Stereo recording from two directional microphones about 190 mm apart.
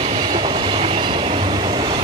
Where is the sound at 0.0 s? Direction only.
30° right (ahead or behind).